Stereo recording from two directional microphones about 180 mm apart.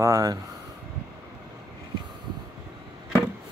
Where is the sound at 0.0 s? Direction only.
15° right (ahead or behind).